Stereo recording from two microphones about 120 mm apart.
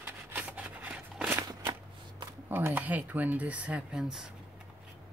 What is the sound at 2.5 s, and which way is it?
Speech, 15° right (ahead or behind).